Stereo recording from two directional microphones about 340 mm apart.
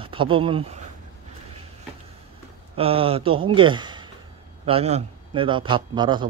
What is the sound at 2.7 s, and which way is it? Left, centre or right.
A man's voice, centre.